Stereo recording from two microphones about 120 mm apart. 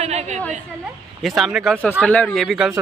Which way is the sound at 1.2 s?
Centre (ahead or behind).